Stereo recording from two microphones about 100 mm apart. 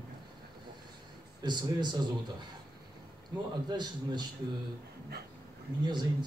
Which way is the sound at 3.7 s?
45° right (ahead or behind).